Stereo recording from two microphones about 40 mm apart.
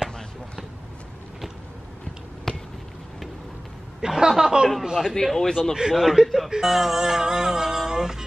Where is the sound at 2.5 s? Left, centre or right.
Centre.